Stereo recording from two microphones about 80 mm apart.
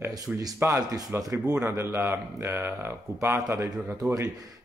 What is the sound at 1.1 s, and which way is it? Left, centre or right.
Speech, right.